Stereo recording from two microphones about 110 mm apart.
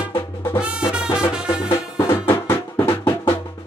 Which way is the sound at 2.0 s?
25° left (ahead or behind).